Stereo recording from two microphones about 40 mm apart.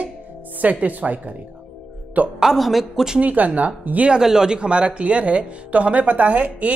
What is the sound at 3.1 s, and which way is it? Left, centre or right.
Speech, right.